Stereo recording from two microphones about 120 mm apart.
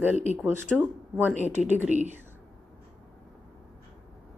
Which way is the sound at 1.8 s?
75° right (ahead or behind).